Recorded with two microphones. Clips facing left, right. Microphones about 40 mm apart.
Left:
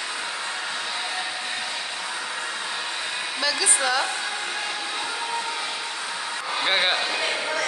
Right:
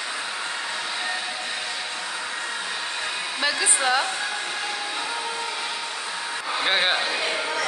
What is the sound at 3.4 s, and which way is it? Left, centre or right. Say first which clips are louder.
Speech: right 1 dB; right.